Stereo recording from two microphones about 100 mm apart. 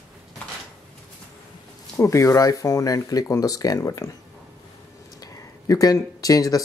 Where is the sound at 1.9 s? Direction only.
30° left (ahead or behind).